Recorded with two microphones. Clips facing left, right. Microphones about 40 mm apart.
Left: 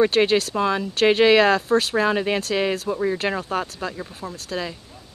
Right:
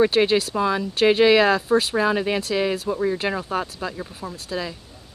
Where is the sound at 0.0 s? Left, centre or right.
Centre.